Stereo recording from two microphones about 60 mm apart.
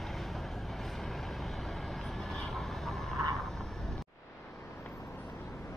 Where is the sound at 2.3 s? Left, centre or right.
Centre.